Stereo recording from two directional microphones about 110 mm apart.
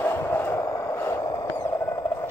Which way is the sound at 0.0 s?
20° left (ahead or behind).